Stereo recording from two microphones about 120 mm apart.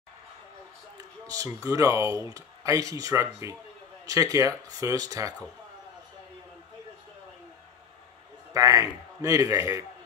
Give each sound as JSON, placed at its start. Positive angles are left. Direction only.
{"t": 0.9, "sound": "speech", "side_deg": -30}
{"t": 8.5, "sound": "speech", "side_deg": -25}